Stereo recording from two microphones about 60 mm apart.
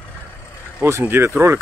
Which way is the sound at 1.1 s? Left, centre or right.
Right.